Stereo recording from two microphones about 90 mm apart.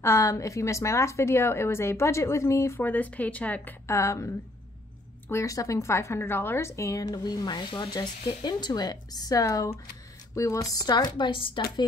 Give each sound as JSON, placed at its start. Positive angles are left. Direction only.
{"t": 0.0, "sound": "a woman's voice", "side_deg": 30}
{"t": 2.8, "sound": "speech", "side_deg": 20}
{"t": 3.8, "sound": "a woman's voice", "side_deg": 35}